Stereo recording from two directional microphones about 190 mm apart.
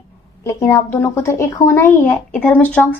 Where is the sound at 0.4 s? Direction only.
15° left (ahead or behind).